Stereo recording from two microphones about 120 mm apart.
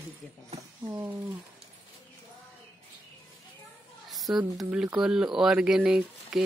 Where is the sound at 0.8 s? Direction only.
30° right (ahead or behind).